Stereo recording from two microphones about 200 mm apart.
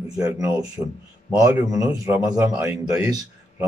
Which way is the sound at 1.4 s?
15° right (ahead or behind).